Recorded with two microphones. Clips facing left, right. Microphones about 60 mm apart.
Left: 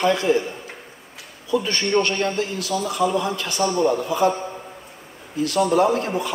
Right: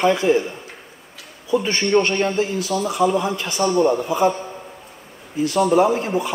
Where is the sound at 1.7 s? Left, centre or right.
Centre.